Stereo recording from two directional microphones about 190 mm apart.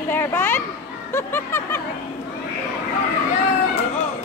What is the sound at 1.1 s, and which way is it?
Music, 10° left (ahead or behind).